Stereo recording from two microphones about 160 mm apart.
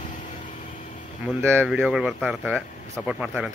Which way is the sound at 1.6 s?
5° right (ahead or behind).